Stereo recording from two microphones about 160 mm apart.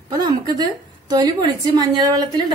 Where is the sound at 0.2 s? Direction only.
25° right (ahead or behind).